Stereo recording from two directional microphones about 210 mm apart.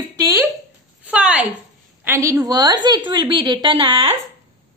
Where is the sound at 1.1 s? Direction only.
5° right (ahead or behind).